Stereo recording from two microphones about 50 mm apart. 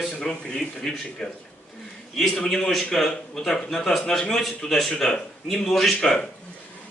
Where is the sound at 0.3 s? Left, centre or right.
Centre.